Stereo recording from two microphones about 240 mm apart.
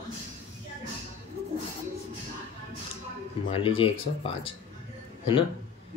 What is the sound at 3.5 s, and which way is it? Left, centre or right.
Speech, left.